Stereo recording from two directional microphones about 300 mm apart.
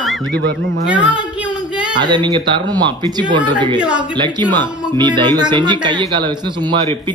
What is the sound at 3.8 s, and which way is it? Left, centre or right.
Speech, centre.